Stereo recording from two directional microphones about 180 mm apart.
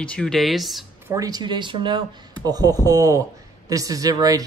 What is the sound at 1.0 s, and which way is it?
Speech, 20° right (ahead or behind).